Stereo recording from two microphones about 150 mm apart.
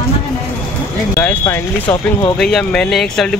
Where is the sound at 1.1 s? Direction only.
15° left (ahead or behind).